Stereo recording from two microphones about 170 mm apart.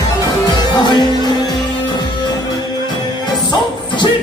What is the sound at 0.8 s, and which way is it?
Music, 25° left (ahead or behind).